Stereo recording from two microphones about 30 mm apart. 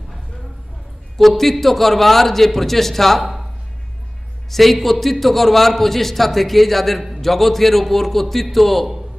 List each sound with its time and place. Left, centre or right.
1.1 s a man's voice: centre
4.5 s a man's voice: centre